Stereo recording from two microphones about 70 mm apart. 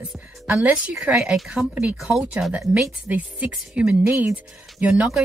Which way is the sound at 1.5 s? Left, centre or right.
Centre.